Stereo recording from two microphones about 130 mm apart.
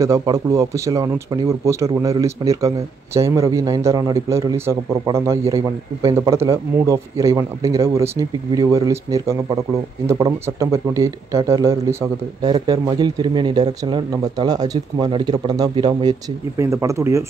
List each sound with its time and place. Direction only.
0.0 s speech: 25° right (ahead or behind)
16.5 s speech: 25° right (ahead or behind)